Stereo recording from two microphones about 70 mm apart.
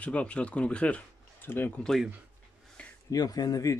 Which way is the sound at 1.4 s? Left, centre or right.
Left.